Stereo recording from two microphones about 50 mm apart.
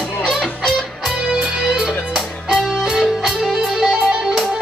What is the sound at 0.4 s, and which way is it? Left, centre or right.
Music, centre.